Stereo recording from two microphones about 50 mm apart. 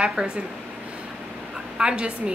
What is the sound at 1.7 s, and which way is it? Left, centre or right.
Speech, centre.